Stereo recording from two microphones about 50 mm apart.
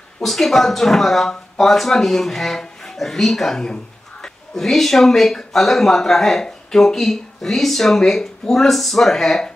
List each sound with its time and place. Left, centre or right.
0.2 s speech: centre